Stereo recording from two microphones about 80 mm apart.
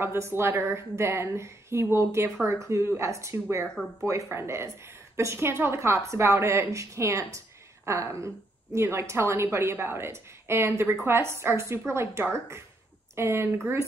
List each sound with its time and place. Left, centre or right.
0.0 s a woman's voice: right